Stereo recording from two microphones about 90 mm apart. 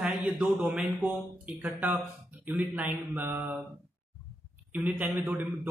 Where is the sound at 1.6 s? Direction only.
20° right (ahead or behind).